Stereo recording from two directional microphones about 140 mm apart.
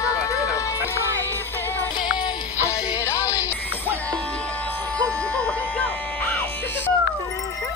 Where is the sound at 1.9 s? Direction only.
30° left (ahead or behind).